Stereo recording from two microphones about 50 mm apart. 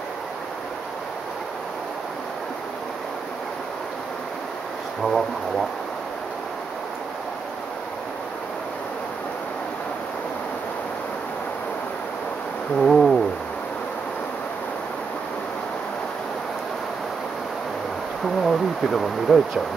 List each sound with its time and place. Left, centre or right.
5.0 s speech: centre
12.7 s a sound: centre
18.4 s speech: centre